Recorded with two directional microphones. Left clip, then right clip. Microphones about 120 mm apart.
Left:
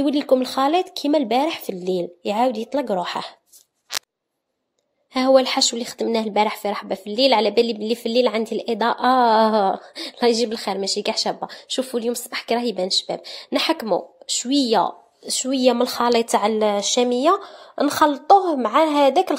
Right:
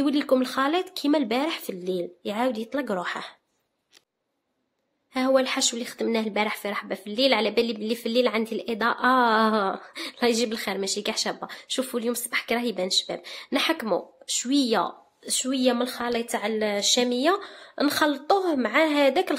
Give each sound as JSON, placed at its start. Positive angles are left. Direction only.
{"t": 0.0, "sound": "a woman's voice", "side_deg": 20}
{"t": 5.1, "sound": "a woman's voice", "side_deg": 40}
{"t": 15.5, "sound": "a woman's voice", "side_deg": 40}
{"t": 16.0, "sound": "a woman's voice", "side_deg": 75}
{"t": 16.3, "sound": "a woman's voice", "side_deg": 45}
{"t": 16.7, "sound": "a woman's voice", "side_deg": 25}